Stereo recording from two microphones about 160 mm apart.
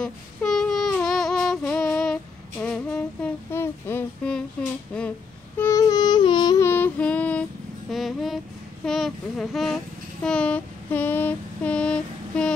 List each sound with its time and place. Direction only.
0.0 s a sound: 5° left (ahead or behind)
2.6 s humming: 5° left (ahead or behind)
5.6 s music: 20° left (ahead or behind)
6.6 s female singing: 10° left (ahead or behind)
7.9 s music: centre (ahead or behind)
8.8 s child singing: 5° left (ahead or behind)